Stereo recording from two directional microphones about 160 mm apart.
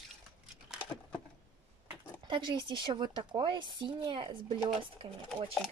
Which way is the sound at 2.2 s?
30° right (ahead or behind).